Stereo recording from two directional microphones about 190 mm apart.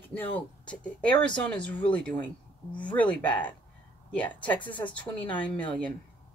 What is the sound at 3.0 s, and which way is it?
Speech, 25° left (ahead or behind).